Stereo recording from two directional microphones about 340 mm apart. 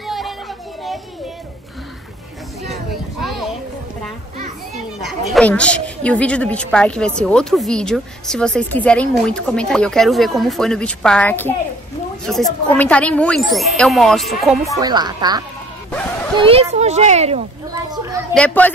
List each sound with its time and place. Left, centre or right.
0.0 s children playing: centre
2.7 s a sound: centre
5.0 s a woman's voice: centre
14.8 s speech: centre
18.3 s a woman's voice: centre